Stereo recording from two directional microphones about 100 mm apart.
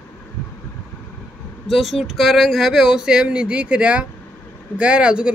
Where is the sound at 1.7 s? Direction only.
Centre (ahead or behind).